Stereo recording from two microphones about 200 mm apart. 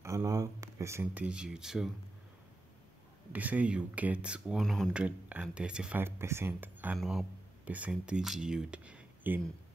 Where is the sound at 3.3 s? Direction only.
10° right (ahead or behind).